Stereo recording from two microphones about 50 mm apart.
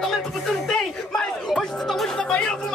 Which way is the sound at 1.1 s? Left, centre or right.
Centre.